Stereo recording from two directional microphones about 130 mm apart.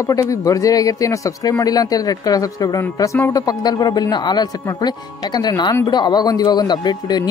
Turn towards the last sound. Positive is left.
turn(degrees=30)  # may be behind; listen again after turning